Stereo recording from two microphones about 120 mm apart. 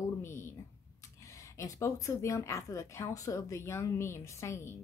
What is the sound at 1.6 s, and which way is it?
Speech, 25° left (ahead or behind).